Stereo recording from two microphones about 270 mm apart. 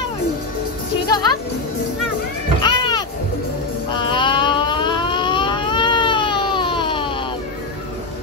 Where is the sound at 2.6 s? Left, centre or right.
Centre.